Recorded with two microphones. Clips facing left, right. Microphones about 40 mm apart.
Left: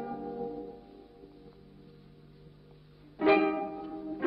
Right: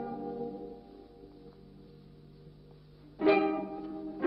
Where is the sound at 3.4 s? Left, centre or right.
Centre.